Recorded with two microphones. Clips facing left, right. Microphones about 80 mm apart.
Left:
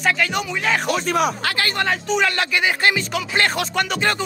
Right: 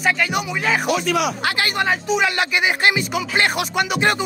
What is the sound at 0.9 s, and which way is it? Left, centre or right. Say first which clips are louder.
Speech: even; left.